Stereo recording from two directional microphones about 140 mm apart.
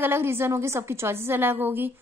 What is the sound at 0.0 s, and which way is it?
A woman's voice, 15° right (ahead or behind).